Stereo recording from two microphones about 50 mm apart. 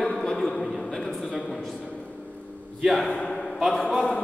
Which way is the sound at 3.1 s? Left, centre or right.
Left.